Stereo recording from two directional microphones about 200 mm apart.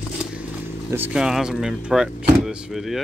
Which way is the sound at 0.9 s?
5° right (ahead or behind).